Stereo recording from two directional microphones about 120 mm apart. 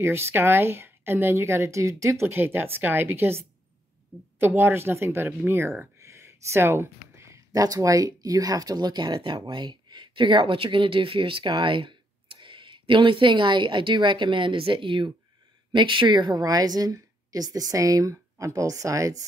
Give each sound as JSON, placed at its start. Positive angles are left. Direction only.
{"t": 0.0, "sound": "a woman's voice", "side_deg": -20}